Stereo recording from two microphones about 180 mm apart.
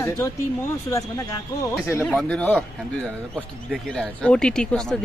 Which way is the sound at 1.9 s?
15° left (ahead or behind).